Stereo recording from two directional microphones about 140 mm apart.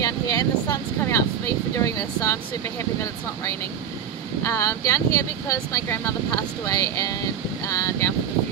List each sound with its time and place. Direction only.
0.0 s speech: 25° left (ahead or behind)
4.4 s speech: 25° left (ahead or behind)